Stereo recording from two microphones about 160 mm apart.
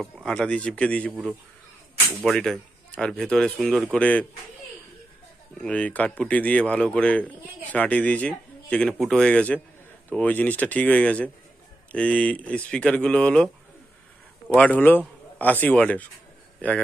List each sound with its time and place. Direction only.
0.0 s speech: 5° left (ahead or behind)
2.2 s speech: centre (ahead or behind)
5.6 s a man's voice: 10° left (ahead or behind)
14.5 s speech: 10° left (ahead or behind)